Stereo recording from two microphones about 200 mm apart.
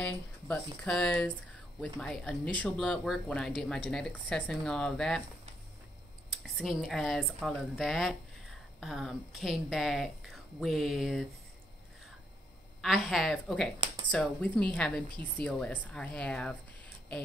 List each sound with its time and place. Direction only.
0.0 s a woman's voice: 5° left (ahead or behind)
6.3 s a woman's voice: centre (ahead or behind)
12.8 s a woman's voice: centre (ahead or behind)
15.0 s a woman's voice: 25° right (ahead or behind)
15.4 s a woman's voice: 5° left (ahead or behind)